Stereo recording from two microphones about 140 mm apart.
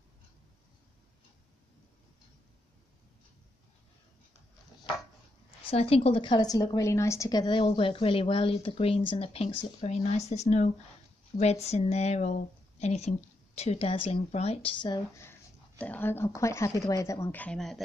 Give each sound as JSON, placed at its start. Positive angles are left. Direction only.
{"t": 5.7, "sound": "a woman's voice", "side_deg": 45}
{"t": 15.8, "sound": "speech", "side_deg": 15}